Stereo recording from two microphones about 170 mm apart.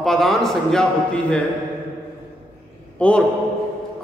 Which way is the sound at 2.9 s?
5° left (ahead or behind).